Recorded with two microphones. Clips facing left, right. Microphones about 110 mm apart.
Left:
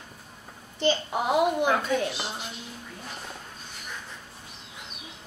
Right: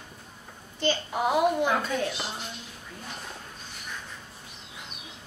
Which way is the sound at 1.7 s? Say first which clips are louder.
Left 2 dB; centre (ahead or behind).